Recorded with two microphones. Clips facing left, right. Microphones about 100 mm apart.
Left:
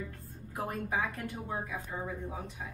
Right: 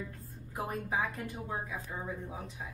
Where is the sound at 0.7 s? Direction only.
20° right (ahead or behind).